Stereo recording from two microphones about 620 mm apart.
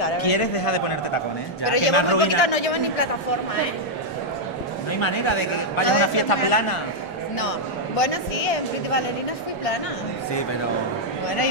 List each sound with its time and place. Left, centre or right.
0.0 s a man's voice: left
5.0 s a man's voice: left